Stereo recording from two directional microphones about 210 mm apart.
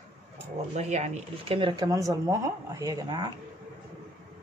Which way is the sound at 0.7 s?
35° right (ahead or behind).